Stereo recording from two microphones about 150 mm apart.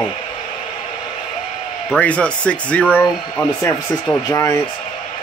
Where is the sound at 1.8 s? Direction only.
10° left (ahead or behind).